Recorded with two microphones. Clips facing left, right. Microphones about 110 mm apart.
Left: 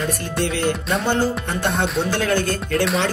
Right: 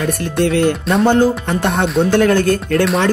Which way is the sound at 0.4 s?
50° right (ahead or behind).